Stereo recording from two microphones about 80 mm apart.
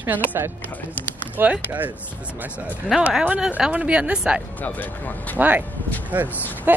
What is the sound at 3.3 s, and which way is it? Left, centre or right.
Speech, centre.